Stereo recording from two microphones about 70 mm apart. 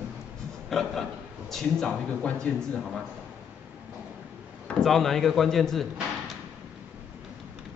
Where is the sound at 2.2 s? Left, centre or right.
Centre.